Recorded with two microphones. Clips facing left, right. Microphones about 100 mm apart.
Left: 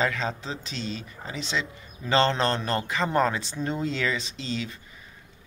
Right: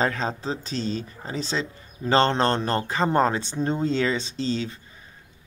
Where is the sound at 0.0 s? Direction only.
35° right (ahead or behind).